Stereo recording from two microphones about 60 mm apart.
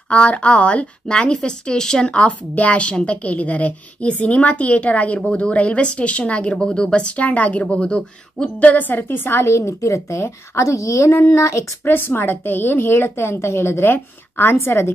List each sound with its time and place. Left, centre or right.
0.1 s a woman's voice: centre; by 9.4 s left
9.4 s a woman's voice: left
11.8 s a woman's voice: left